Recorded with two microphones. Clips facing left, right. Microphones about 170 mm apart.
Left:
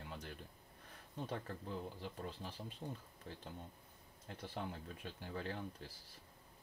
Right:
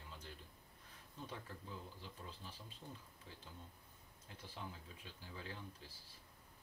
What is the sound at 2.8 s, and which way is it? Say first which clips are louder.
Speech: left 7 dB; 50° left (ahead or behind).